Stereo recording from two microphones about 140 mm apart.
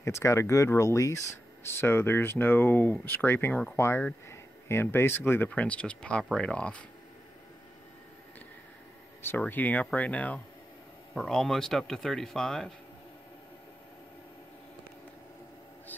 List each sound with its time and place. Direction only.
0.0 s speech: 20° left (ahead or behind)
9.4 s speech: 10° left (ahead or behind)